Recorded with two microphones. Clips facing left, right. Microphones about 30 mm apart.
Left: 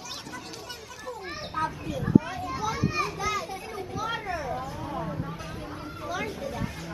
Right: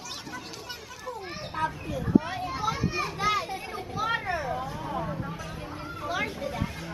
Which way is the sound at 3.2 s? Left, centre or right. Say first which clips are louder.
Right 3 dB; right.